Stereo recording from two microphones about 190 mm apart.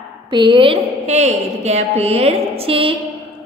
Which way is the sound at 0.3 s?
25° right (ahead or behind).